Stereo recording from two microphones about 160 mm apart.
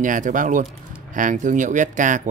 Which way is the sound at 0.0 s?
55° right (ahead or behind).